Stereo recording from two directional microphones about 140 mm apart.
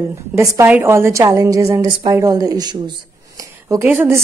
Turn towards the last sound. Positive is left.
turn(degrees=-15)  # may be behind; listen again after turning